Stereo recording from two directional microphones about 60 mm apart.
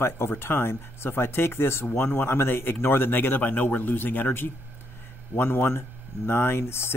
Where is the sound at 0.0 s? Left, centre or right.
Left.